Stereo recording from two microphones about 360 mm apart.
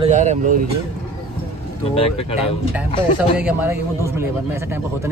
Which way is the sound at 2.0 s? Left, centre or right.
Centre.